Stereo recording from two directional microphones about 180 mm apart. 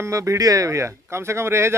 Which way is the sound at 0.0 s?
15° right (ahead or behind).